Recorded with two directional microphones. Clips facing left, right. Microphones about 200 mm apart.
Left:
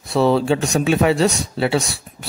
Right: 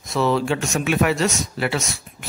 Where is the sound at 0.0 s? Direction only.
30° left (ahead or behind).